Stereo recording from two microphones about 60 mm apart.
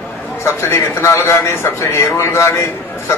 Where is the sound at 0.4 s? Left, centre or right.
Left.